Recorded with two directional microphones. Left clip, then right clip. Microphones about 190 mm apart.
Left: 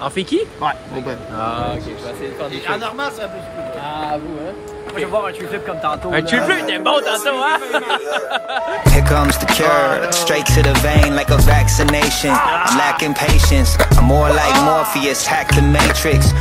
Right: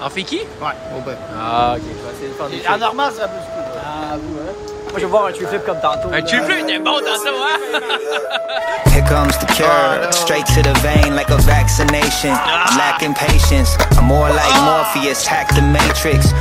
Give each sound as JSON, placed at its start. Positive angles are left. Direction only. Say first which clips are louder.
{"t": 0.0, "sound": "a man's voice", "louder": "left 3 dB", "side_deg": 0}
{"t": 2.6, "sound": "speech", "louder": "right 7 dB", "side_deg": -35}
{"t": 4.9, "sound": "speech", "louder": "right 5 dB", "side_deg": -55}
{"t": 6.1, "sound": "a man's voice", "louder": "even", "side_deg": 0}